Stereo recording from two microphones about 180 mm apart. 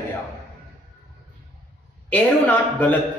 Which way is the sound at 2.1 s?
10° left (ahead or behind).